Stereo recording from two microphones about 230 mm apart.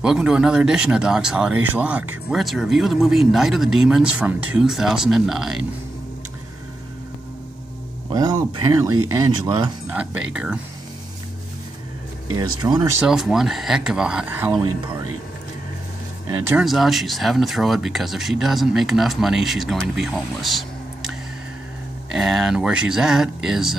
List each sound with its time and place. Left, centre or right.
0.0 s speech: centre
8.1 s speech: centre
9.8 s speech: centre
12.4 s speech: centre
13.0 s speech: centre
16.4 s speech: centre
22.1 s speech: centre